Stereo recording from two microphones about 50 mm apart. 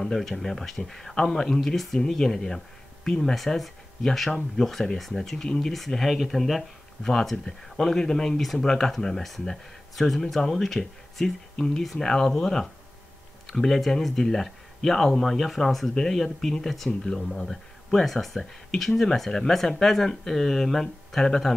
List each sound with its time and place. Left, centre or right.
0.0 s speech: centre